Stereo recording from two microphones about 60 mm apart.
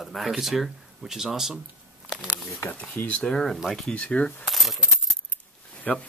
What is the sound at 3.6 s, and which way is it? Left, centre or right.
Speech, centre.